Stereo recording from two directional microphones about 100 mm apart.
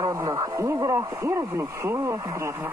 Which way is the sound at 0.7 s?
40° right (ahead or behind).